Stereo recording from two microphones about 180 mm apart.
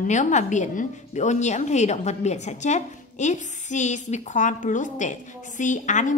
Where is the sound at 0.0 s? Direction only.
40° left (ahead or behind).